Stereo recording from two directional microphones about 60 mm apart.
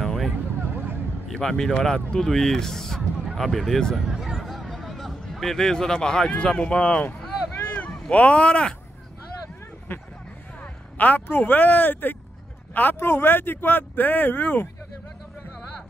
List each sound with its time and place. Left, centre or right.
0.0 s vehicle: centre
1.3 s speech: centre
8.1 s speech: left
10.6 s speech: left